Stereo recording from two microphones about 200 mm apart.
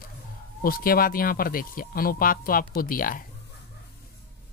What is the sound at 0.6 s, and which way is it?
Speech, 45° left (ahead or behind).